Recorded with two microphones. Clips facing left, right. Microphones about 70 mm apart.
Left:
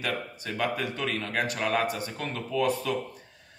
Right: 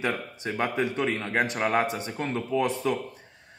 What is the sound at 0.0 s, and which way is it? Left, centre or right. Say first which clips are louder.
A man's voice: right 3 dB; right.